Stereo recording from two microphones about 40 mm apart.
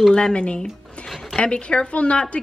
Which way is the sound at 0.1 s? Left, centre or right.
Left.